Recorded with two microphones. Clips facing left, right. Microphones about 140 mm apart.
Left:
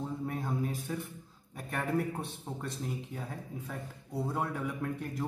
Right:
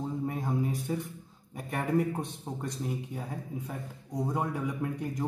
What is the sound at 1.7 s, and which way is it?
Speech, 15° right (ahead or behind).